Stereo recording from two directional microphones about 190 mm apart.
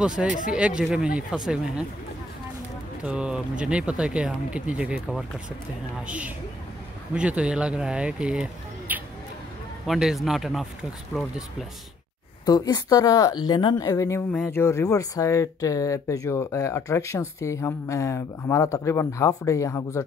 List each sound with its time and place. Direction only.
0.3 s speech: 45° left (ahead or behind)
0.6 s speech: 5° right (ahead or behind)
3.0 s speech: 5° right (ahead or behind)
12.4 s speech: 20° left (ahead or behind)